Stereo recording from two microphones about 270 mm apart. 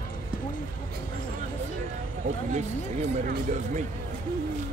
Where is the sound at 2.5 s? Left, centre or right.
Right.